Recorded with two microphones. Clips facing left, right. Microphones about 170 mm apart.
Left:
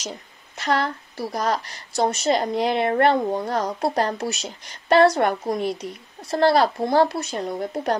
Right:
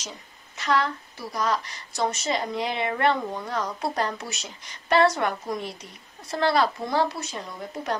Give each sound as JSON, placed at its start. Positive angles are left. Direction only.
{"t": 0.6, "sound": "speech", "side_deg": 60}
{"t": 1.1, "sound": "speech", "side_deg": 45}
{"t": 5.2, "sound": "a woman's voice", "side_deg": 50}
{"t": 6.3, "sound": "speech", "side_deg": 40}
{"t": 7.0, "sound": "speech", "side_deg": 65}
{"t": 7.5, "sound": "a woman's voice", "side_deg": 45}